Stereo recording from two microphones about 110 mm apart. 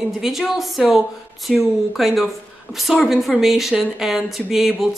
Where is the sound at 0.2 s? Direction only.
Centre (ahead or behind).